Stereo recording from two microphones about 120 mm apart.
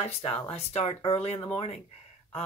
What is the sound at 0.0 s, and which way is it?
Speech, 60° left (ahead or behind).